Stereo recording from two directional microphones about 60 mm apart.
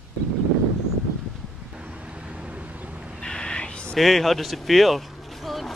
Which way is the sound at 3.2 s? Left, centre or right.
Centre.